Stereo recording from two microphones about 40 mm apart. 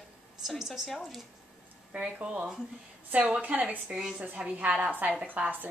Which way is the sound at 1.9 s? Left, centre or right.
Right.